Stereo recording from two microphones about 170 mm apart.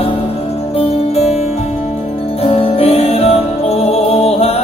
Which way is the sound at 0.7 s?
35° left (ahead or behind).